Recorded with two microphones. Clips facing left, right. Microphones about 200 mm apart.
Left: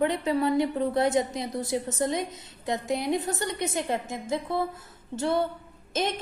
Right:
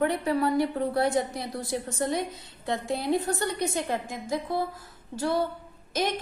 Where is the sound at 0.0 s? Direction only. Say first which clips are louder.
Even; 20° left (ahead or behind).